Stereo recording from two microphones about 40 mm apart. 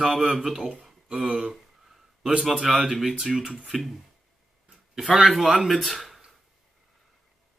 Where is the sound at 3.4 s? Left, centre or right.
Right.